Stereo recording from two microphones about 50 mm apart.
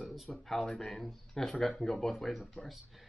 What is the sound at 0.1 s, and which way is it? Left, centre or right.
Speech, centre.